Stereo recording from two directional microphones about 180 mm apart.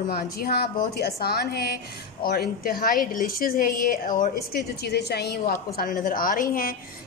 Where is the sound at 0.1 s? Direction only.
55° left (ahead or behind).